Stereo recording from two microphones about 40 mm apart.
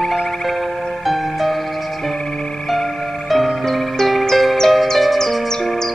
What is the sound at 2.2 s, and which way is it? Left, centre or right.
Music, centre.